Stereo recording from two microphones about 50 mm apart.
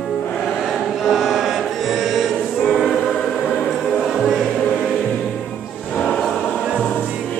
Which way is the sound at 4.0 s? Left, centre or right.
Centre.